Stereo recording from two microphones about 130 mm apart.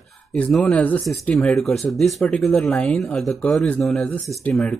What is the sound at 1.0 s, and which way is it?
Speech, centre (ahead or behind).